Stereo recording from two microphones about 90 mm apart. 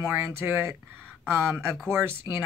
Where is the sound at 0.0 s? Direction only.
25° right (ahead or behind).